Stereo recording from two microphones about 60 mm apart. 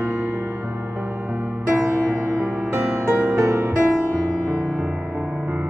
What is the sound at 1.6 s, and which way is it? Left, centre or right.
Music, right.